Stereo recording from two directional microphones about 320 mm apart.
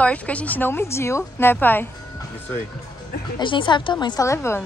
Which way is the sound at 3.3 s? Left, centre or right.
Centre.